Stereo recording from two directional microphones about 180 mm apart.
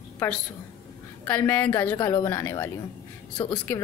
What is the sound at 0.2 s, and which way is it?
A woman's voice, 10° left (ahead or behind).